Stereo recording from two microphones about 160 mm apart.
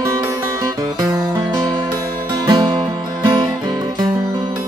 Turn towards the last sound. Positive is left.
turn(degrees=-25)  # may be behind; listen again after turning